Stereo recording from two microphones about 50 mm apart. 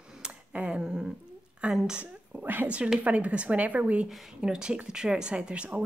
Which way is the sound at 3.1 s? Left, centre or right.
Right.